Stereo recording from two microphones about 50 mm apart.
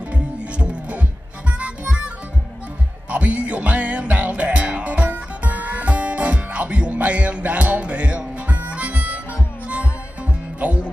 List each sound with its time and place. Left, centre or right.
0.1 s music: right
3.1 s music: right
8.5 s harmonica: right
10.6 s music: right